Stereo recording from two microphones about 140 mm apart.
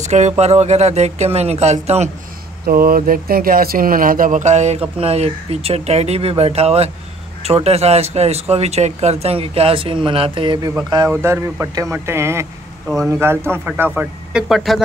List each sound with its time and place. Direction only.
0.0 s speech: 55° right (ahead or behind)
2.6 s speech: 90° right; by 10.7 s 35° right (ahead or behind)
11.1 s speech: 15° right (ahead or behind)
12.8 s speech: centre (ahead or behind)
13.2 s a man's voice: 15° right (ahead or behind)
13.9 s speech: 5° right (ahead or behind)